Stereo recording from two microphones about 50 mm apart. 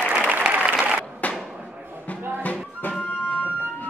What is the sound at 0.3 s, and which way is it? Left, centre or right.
Applause, right.